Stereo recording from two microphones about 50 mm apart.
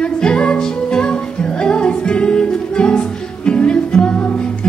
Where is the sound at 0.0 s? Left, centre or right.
Left.